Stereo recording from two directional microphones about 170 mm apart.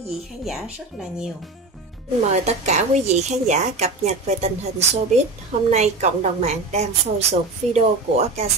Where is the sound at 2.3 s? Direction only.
40° right (ahead or behind).